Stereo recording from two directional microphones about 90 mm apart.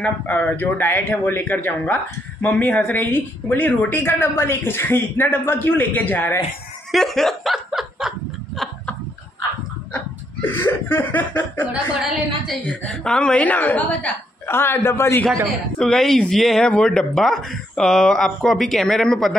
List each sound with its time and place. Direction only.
0.0 s speech: 15° left (ahead or behind)
6.9 s snicker: 5° left (ahead or behind)
10.4 s speech: 25° left (ahead or behind)
12.0 s speech: 5° right (ahead or behind)
12.6 s a woman's voice: 10° left (ahead or behind); by 15.2 s 30° left (ahead or behind)
15.4 s speech: 5° left (ahead or behind)